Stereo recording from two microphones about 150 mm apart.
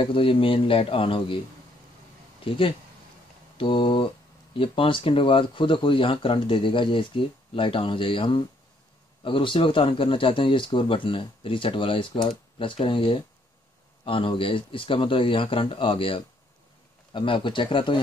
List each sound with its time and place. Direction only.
0.0 s a man's voice: 35° left (ahead or behind)
2.4 s a man's voice: 35° left (ahead or behind)